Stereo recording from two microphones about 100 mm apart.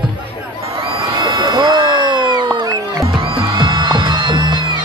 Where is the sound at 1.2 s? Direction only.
45° right (ahead or behind).